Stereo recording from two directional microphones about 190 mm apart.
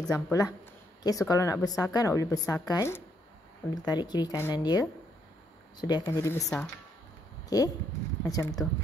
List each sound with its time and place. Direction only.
0.0 s a woman's voice: 20° left (ahead or behind)